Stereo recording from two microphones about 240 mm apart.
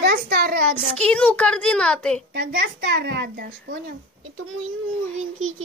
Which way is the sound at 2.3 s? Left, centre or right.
Right.